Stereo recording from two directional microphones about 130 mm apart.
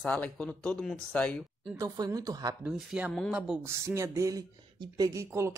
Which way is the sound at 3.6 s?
20° right (ahead or behind).